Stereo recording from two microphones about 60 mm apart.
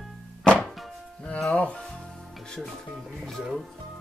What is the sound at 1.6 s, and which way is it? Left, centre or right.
Speech, centre.